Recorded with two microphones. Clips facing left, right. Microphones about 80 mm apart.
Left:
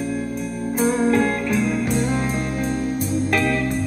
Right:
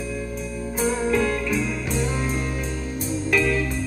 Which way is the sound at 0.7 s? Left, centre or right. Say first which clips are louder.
Left 4 dB; left.